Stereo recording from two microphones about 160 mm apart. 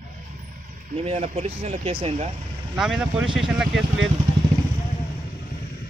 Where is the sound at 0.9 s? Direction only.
45° right (ahead or behind).